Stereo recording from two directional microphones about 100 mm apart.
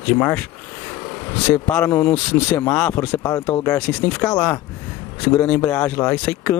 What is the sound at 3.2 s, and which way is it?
Speech, 35° left (ahead or behind).